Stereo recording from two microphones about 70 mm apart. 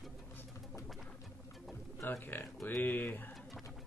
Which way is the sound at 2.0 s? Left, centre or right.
Left.